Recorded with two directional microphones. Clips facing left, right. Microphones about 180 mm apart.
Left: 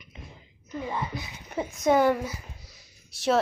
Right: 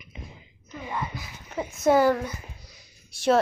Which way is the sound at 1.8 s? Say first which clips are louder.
Right 2 dB; 5° right (ahead or behind).